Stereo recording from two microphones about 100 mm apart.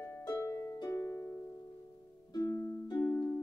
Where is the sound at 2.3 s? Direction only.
35° left (ahead or behind).